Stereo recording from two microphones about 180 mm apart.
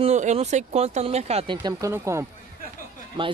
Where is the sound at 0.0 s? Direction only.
40° right (ahead or behind).